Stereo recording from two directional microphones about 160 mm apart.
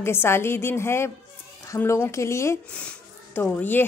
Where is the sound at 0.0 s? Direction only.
15° left (ahead or behind).